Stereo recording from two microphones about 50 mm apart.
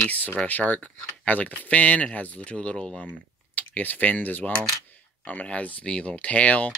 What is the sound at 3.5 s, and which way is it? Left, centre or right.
Speech, left.